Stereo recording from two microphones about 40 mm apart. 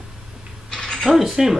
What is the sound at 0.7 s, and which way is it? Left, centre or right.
Mechanisms, centre.